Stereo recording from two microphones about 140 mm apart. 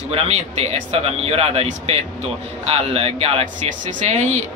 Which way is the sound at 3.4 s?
60° right (ahead or behind).